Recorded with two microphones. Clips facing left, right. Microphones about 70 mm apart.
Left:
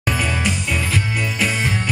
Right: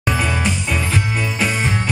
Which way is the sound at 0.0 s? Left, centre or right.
Right.